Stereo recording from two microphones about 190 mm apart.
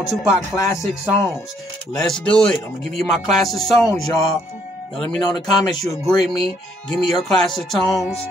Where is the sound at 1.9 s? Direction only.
5° left (ahead or behind).